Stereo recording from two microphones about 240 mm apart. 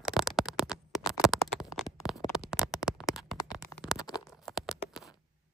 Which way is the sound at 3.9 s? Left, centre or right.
Centre.